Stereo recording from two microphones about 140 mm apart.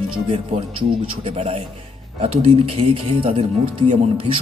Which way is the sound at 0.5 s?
40° right (ahead or behind).